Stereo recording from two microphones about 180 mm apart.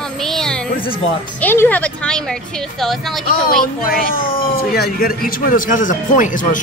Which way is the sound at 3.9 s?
50° left (ahead or behind).